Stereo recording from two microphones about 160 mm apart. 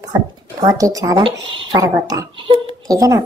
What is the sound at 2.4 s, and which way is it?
Speech, 30° right (ahead or behind).